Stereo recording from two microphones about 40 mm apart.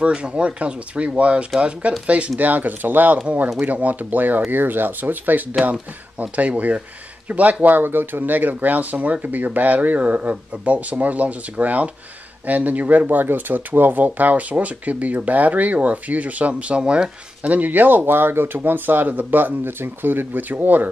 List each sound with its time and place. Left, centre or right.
0.0 s speech: right
7.6 s speech: right
17.4 s speech: right